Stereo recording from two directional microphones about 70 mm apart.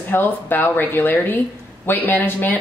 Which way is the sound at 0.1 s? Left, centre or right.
Left.